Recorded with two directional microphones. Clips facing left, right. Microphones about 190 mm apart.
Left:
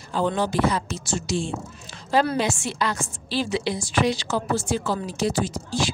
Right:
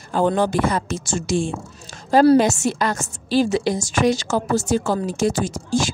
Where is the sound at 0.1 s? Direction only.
50° right (ahead or behind).